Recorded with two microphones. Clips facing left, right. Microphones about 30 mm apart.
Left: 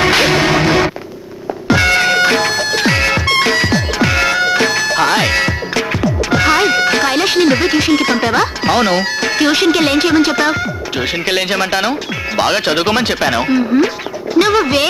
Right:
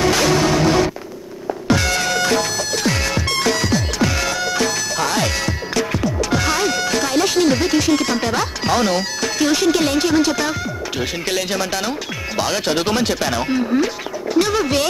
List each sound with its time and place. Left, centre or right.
0.0 s music: left
14.4 s speech: left